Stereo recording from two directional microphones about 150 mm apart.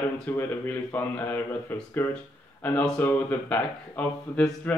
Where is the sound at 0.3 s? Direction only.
15° left (ahead or behind).